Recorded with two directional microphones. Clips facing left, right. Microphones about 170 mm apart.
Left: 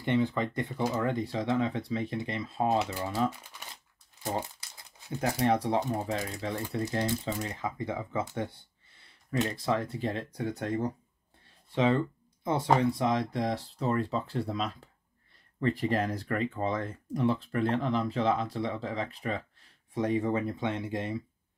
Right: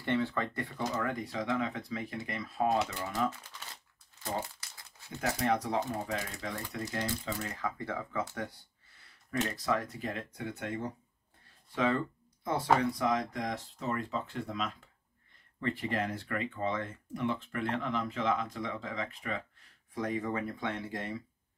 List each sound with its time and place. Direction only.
0.0 s speech: 15° left (ahead or behind)
9.6 s speech: 30° left (ahead or behind)
11.7 s speech: 25° left (ahead or behind)